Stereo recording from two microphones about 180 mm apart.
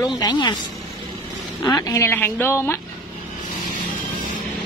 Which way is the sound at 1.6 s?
20° left (ahead or behind).